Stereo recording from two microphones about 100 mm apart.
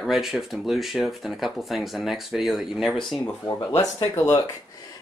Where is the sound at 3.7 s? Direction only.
25° left (ahead or behind).